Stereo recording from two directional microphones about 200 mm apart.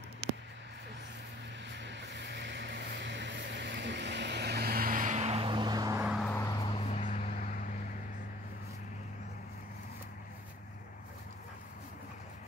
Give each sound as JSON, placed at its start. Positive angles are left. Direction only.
{"t": 1.8, "sound": "vehicle", "side_deg": -60}
{"t": 6.0, "sound": "vehicle", "side_deg": 0}
{"t": 6.3, "sound": "vehicle", "side_deg": 15}
{"t": 6.9, "sound": "vehicle", "side_deg": 35}